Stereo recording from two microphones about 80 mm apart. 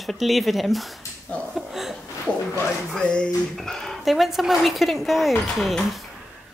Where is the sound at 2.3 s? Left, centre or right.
Centre.